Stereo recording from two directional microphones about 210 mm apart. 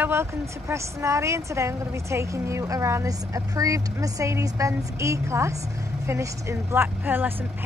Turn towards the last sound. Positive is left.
turn(degrees=-10)  # may be behind; listen again after turning